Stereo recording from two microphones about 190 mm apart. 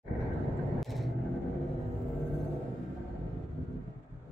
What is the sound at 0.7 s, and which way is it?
Vehicle, centre (ahead or behind).